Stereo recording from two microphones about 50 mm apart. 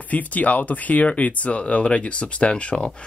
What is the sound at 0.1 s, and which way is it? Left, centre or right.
Speech, left.